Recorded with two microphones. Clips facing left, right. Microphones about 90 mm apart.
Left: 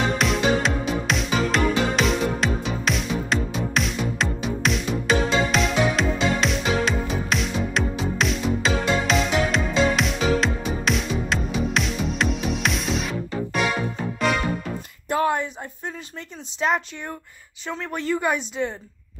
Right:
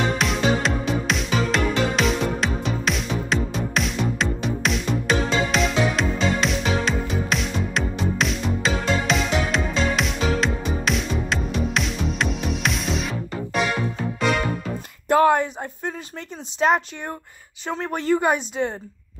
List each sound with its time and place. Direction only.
0.2 s music: centre (ahead or behind)
15.0 s a sound: 55° right (ahead or behind)
16.5 s speech: 45° right (ahead or behind)